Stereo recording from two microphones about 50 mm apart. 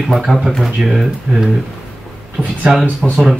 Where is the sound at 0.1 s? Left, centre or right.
Centre.